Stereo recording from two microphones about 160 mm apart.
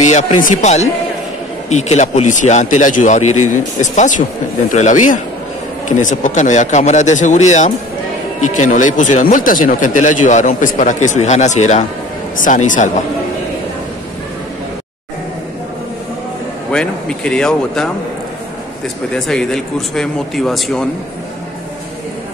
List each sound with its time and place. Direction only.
0.0 s a man's voice: 45° left (ahead or behind)
16.7 s speech: 5° left (ahead or behind)
19.1 s speech: 5° left (ahead or behind)